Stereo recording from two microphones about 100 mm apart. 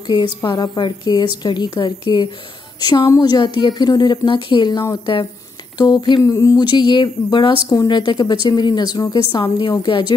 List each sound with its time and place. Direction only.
0.0 s a woman's voice: 45° left (ahead or behind)
6.2 s a woman's voice: 35° left (ahead or behind)
9.3 s a woman's voice: 55° left (ahead or behind)